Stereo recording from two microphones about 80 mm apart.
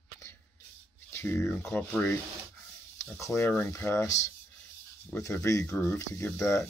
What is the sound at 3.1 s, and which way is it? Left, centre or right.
Speech, left.